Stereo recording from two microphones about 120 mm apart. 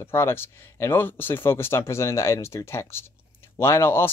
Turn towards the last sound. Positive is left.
turn(degrees=20)  # may be behind; listen again after turning